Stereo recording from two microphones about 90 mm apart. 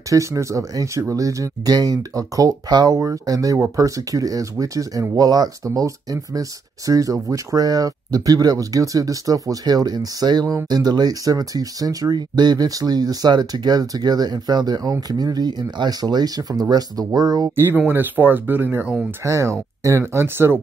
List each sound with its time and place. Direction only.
0.1 s speech: 35° right (ahead or behind)
17.6 s speech: 25° right (ahead or behind)
19.2 s speech: 35° right (ahead or behind)